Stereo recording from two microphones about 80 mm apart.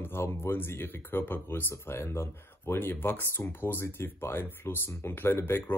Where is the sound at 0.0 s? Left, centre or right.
Left.